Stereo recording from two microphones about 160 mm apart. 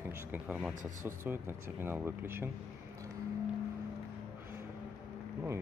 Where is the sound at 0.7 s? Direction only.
55° right (ahead or behind).